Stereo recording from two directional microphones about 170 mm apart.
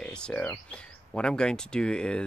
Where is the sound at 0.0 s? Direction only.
5° left (ahead or behind).